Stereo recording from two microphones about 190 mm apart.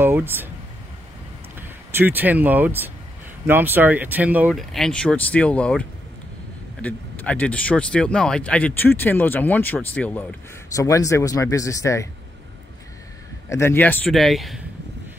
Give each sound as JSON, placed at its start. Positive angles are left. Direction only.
{"t": 0.0, "sound": "a sound", "side_deg": -10}
{"t": 1.6, "sound": "speech", "side_deg": -10}
{"t": 13.5, "sound": "speech", "side_deg": 15}